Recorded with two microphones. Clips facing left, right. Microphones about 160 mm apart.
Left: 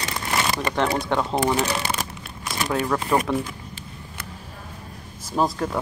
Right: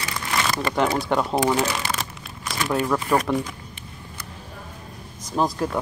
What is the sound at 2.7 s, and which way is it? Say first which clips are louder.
Speech: right 1 dB; 5° right (ahead or behind).